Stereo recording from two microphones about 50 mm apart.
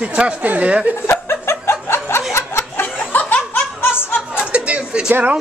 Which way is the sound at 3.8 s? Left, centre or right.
Left.